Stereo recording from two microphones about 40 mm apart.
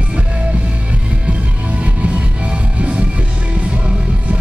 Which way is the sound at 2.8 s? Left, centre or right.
Right.